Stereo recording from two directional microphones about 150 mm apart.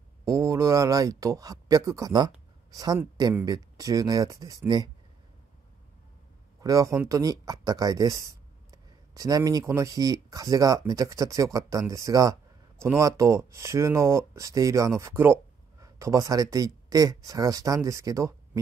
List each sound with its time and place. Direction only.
0.2 s speech: 20° right (ahead or behind)
6.6 s speech: 25° right (ahead or behind)